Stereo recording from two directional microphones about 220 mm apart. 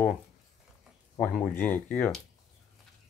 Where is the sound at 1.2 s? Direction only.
10° left (ahead or behind).